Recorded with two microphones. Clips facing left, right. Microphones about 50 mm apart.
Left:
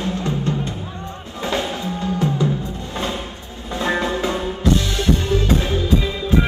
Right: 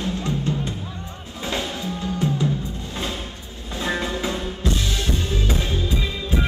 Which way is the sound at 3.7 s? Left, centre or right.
Centre.